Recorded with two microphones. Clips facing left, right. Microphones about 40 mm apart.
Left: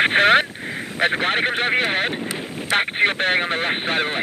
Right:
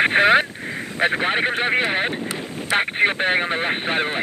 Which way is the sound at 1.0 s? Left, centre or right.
Left.